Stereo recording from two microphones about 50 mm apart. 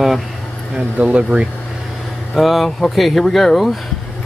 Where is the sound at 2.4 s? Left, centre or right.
Centre.